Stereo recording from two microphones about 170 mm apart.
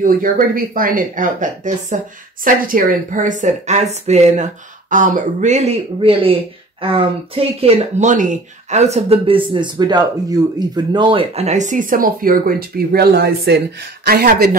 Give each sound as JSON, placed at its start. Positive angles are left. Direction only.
{"t": 0.0, "sound": "speech", "side_deg": -55}